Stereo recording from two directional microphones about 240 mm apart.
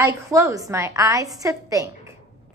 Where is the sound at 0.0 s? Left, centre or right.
Centre.